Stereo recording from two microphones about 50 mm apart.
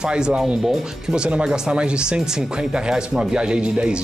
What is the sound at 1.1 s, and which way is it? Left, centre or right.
Speech, centre.